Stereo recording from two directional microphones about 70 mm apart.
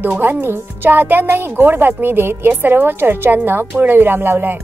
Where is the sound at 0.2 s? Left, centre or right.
Right.